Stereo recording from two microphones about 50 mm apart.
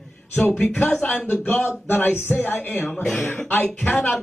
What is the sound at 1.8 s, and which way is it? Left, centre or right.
Speech, left.